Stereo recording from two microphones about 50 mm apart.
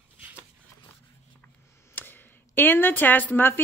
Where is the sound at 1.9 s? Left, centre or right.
Left.